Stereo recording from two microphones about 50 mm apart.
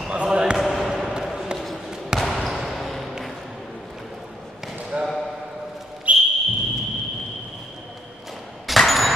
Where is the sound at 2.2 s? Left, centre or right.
Centre.